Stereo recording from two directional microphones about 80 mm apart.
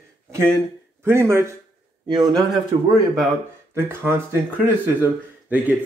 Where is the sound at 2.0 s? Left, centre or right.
Right.